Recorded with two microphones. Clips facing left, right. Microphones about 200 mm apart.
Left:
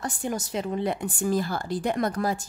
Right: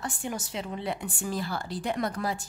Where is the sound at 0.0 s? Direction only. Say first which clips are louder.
Left 4 dB; 40° left (ahead or behind).